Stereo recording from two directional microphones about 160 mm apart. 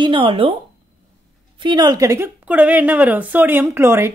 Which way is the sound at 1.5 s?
30° right (ahead or behind).